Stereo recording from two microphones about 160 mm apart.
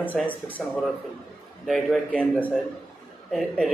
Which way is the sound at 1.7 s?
Centre (ahead or behind).